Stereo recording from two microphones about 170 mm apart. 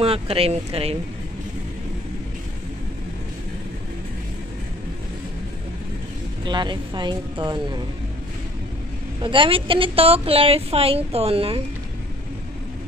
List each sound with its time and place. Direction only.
0.0 s a woman's voice: 35° right (ahead or behind)
6.4 s speech: 25° right (ahead or behind)
9.2 s a woman's voice: 30° right (ahead or behind)